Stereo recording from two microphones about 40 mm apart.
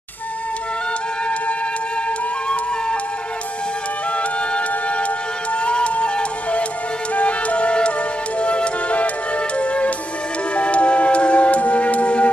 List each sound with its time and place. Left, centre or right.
2.0 s music: left
4.1 s music: left